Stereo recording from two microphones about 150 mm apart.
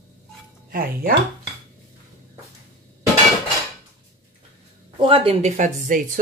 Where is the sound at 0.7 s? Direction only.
75° right (ahead or behind).